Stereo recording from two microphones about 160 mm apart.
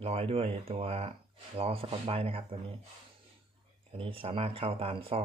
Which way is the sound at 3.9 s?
35° right (ahead or behind).